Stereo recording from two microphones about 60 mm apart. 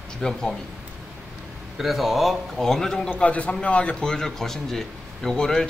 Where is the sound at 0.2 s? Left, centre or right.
Centre.